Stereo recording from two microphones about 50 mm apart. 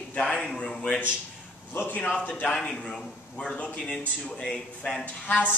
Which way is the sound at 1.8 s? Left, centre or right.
Left.